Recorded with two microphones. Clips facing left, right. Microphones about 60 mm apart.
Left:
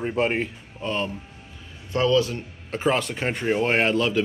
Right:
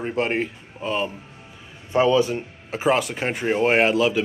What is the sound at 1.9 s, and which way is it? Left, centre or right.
Speech, centre.